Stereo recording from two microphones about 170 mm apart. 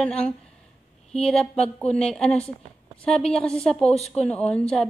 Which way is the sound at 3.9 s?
40° left (ahead or behind).